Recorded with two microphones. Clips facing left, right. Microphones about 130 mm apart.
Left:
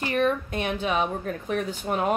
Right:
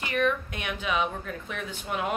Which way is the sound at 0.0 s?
35° left (ahead or behind).